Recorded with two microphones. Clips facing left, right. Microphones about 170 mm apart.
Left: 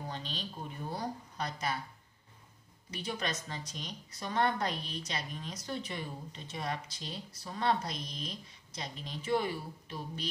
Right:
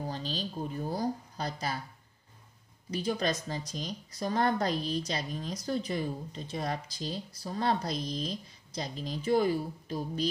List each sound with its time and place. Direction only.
0.1 s speech: 35° right (ahead or behind)
2.9 s speech: 35° right (ahead or behind)